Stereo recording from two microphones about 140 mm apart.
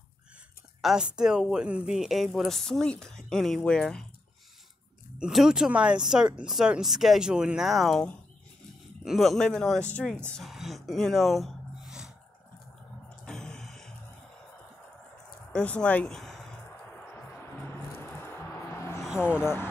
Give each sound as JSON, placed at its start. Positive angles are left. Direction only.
{"t": 0.7, "sound": "speech", "side_deg": -5}
{"t": 5.2, "sound": "speech", "side_deg": -5}
{"t": 13.2, "sound": "a sound", "side_deg": 5}
{"t": 15.5, "sound": "speech", "side_deg": 10}
{"t": 17.0, "sound": "music", "side_deg": 15}
{"t": 19.1, "sound": "speech", "side_deg": 15}